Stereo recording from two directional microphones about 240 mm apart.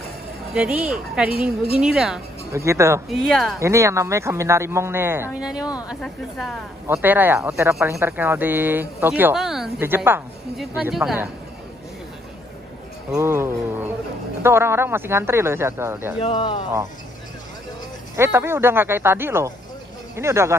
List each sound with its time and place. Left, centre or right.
0.5 s speech: centre
3.1 s speech: centre
3.6 s speech: centre
13.1 s speech: centre
16.2 s speech: left
18.1 s speech: centre